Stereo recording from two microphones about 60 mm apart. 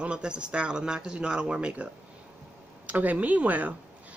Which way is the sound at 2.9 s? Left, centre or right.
Right.